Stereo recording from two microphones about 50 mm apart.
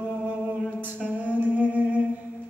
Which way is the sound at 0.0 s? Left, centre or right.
Right.